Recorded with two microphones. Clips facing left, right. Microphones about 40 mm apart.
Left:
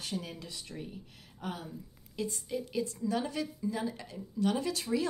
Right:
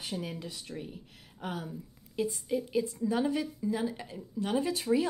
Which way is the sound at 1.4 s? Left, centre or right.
Right.